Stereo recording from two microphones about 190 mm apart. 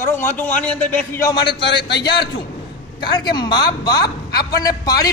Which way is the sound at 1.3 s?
25° left (ahead or behind).